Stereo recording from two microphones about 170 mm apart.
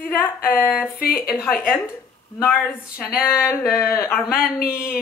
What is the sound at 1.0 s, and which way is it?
Speech, 60° left (ahead or behind).